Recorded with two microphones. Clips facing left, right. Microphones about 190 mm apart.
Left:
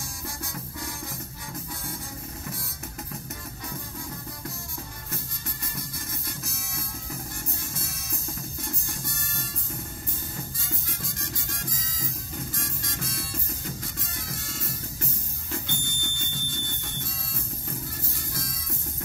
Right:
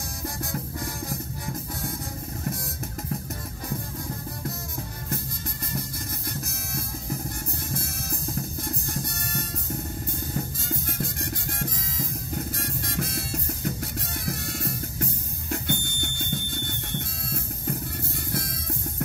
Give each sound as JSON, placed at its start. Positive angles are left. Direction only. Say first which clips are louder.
{"t": 11.0, "sound": "music", "louder": "right 6 dB", "side_deg": -60}
{"t": 18.3, "sound": "music", "louder": "right 6 dB", "side_deg": -60}